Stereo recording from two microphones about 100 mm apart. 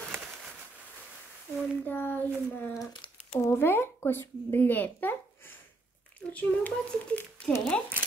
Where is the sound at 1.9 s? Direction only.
20° left (ahead or behind).